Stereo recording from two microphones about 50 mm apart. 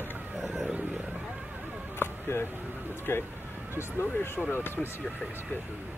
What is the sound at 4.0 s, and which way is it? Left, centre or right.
Speech, left.